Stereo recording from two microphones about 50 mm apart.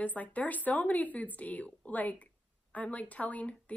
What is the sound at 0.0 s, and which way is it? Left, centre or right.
Speech, left.